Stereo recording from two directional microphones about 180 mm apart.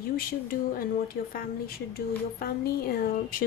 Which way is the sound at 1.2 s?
55° left (ahead or behind).